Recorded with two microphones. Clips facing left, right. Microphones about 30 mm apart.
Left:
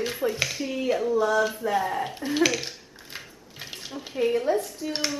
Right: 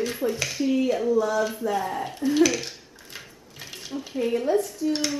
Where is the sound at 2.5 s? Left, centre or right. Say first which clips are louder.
Right 1 dB; centre.